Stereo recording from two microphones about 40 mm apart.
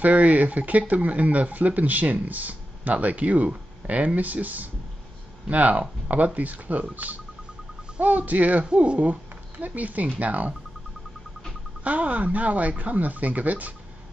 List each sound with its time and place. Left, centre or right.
0.0 s speech: right
8.6 s speech: right
11.8 s speech: right